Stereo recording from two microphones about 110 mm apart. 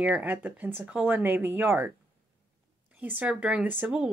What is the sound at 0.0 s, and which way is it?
Speech, 15° right (ahead or behind).